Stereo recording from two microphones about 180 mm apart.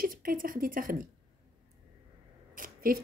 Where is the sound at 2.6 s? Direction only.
50° right (ahead or behind).